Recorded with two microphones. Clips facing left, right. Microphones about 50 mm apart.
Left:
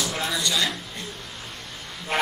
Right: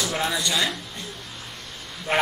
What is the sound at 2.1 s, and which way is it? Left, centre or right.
Speech, right.